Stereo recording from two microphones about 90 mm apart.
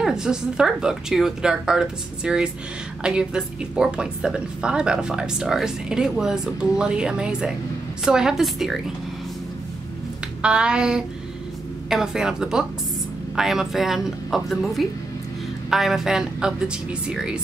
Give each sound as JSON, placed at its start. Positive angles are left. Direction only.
{"t": 0.0, "sound": "a woman's voice", "side_deg": -5}
{"t": 10.4, "sound": "a woman's voice", "side_deg": -10}